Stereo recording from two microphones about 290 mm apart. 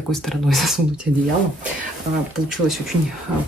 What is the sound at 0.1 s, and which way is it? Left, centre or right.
Speech, centre.